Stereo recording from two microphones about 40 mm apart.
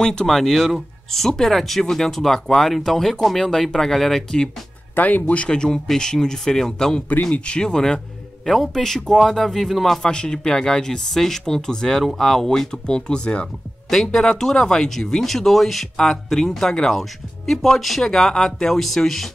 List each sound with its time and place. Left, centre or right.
0.0 s speech: left
0.3 s speech: centre
4.9 s speech: left
5.5 s speech: left
7.3 s speech: left; by 9.9 s centre
10.0 s speech: left
13.8 s speech: centre